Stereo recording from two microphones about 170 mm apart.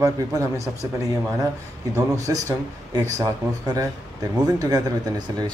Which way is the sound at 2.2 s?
20° right (ahead or behind).